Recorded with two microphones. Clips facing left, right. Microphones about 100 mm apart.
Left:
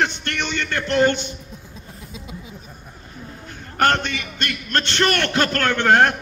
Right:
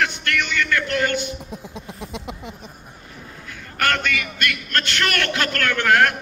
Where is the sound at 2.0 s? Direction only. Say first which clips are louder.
Right 3 dB; 70° right (ahead or behind).